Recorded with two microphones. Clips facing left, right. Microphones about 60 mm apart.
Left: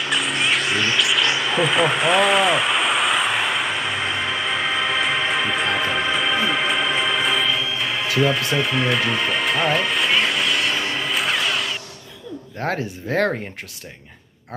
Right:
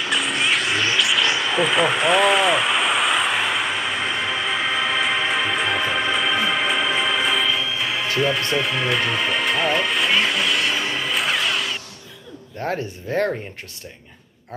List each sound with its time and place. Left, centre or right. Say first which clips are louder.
0.0 s vehicle: even; centre
12.6 s speech: left 1 dB; left